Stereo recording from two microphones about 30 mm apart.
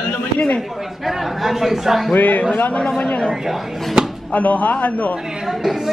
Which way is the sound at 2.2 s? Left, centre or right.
Left.